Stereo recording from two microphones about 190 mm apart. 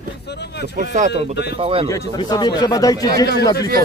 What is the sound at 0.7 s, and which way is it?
Speech, 40° right (ahead or behind).